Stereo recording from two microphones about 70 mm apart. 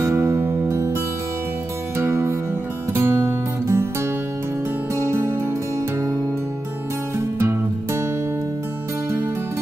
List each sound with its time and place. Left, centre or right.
0.0 s music: right
2.0 s music: right
7.2 s music: right